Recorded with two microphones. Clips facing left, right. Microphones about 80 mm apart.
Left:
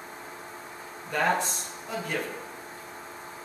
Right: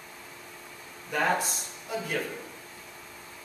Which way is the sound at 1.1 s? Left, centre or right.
Centre.